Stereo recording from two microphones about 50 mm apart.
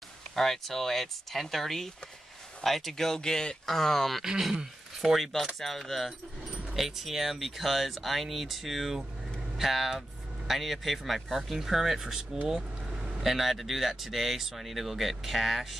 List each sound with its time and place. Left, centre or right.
0.4 s speech: centre
4.2 s speech: centre